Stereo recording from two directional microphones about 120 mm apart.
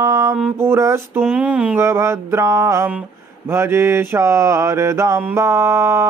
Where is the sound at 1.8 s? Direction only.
25° right (ahead or behind).